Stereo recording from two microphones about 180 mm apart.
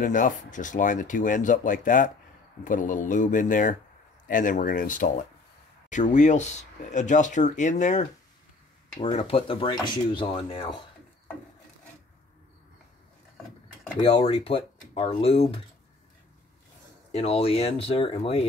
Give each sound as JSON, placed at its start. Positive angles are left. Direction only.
{"t": 0.0, "sound": "speech", "side_deg": 45}
{"t": 9.0, "sound": "speech", "side_deg": 30}
{"t": 14.0, "sound": "speech", "side_deg": 35}
{"t": 17.1, "sound": "speech", "side_deg": 35}